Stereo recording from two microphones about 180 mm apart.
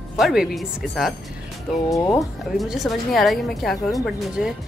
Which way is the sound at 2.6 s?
Centre (ahead or behind).